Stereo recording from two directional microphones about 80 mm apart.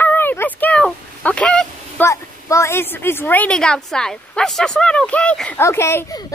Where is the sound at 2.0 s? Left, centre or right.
Left; by 5.6 s centre.